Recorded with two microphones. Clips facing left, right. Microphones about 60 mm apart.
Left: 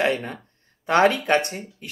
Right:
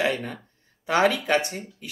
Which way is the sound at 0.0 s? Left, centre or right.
Left.